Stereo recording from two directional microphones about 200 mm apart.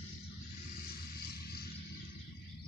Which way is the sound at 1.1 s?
50° left (ahead or behind).